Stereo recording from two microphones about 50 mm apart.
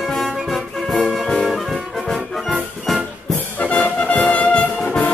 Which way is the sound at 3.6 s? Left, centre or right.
Left.